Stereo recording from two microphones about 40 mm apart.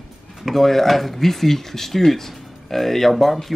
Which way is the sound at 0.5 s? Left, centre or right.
Centre.